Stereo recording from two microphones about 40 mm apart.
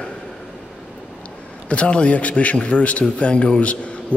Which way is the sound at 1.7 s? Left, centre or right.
Left.